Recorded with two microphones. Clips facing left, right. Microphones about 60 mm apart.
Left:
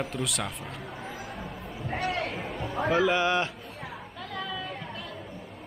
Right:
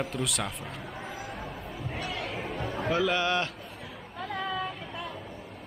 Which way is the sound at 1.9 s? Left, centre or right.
Left.